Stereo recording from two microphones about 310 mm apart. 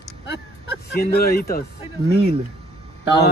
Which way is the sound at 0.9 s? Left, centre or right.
Left.